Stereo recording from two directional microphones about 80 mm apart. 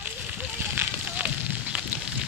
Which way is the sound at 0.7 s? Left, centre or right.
Centre.